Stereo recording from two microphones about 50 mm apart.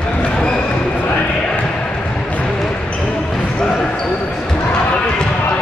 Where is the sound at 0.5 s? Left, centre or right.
Left.